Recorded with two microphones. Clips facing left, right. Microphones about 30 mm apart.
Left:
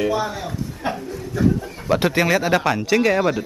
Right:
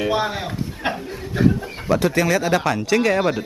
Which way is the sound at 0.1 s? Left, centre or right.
Right.